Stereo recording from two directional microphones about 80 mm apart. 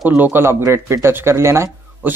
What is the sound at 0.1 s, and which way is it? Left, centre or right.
Speech, right.